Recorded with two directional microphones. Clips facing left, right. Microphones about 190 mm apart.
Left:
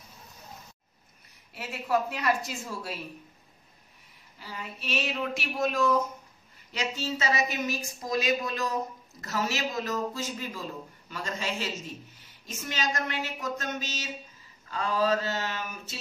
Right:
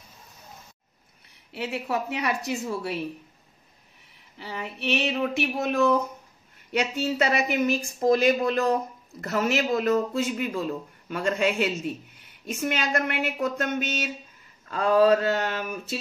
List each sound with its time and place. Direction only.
1.5 s a woman's voice: 65° right (ahead or behind)
4.4 s a woman's voice: 65° right (ahead or behind)